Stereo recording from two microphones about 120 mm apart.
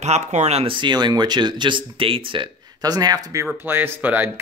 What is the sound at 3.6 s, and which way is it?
Speech, 15° right (ahead or behind).